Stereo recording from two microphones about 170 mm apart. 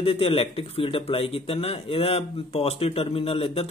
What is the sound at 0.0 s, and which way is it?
Speech, 35° left (ahead or behind).